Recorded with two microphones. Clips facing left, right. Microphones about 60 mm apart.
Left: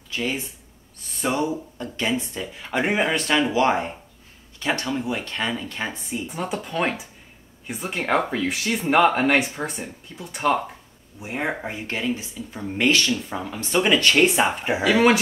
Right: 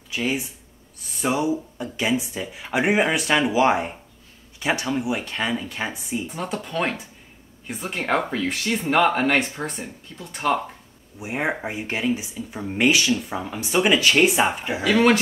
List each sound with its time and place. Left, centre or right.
0.1 s speech: centre
6.2 s speech: centre
11.1 s speech: centre
14.8 s speech: centre